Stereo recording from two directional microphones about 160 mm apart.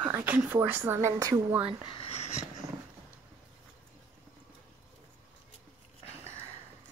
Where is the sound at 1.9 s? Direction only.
40° left (ahead or behind).